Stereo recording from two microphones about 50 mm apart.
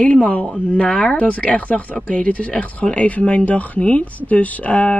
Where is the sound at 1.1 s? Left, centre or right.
Left.